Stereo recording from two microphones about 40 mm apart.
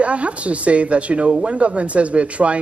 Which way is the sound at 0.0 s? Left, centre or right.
Right.